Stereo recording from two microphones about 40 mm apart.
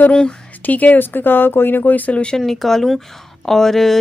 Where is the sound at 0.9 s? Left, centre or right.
Left.